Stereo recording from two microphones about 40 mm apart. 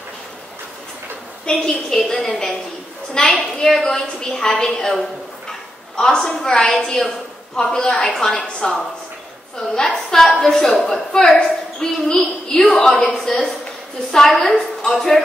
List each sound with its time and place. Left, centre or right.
1.4 s a woman's voice: centre
9.8 s a woman's voice: centre